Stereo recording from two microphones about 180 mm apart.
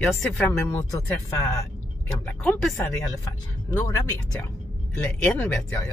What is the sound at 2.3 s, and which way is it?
Speech, 10° left (ahead or behind).